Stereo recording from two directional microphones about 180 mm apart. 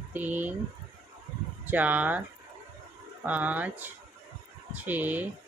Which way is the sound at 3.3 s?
10° right (ahead or behind).